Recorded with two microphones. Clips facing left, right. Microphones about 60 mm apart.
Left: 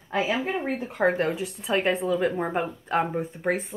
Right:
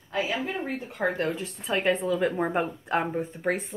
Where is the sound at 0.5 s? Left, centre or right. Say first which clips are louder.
Left 4 dB; left.